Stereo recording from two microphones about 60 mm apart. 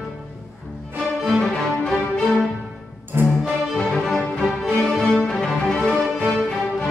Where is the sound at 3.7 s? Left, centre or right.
Centre.